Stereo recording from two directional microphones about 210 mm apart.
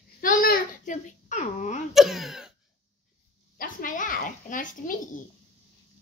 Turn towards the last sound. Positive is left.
turn(degrees=40)  # may be behind; listen again after turning